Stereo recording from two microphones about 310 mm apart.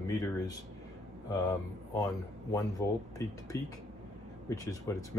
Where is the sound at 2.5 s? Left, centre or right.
Centre.